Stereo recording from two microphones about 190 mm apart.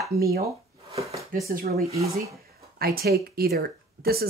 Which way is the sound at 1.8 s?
35° right (ahead or behind).